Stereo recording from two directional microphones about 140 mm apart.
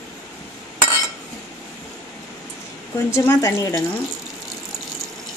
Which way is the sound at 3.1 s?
20° left (ahead or behind).